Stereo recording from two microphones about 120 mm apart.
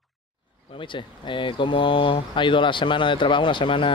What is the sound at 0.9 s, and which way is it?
Speech, 45° left (ahead or behind).